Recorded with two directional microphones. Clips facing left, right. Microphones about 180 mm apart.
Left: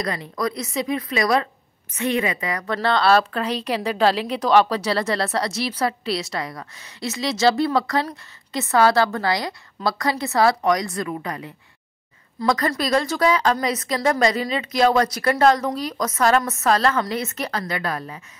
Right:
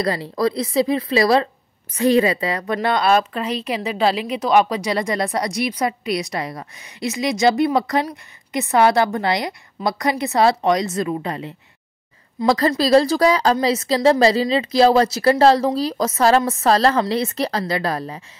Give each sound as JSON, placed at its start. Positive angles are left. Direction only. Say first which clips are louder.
{"t": 0.0, "sound": "a woman's voice", "louder": "right 5 dB", "side_deg": -30}
{"t": 2.7, "sound": "a woman's voice", "louder": "even", "side_deg": -15}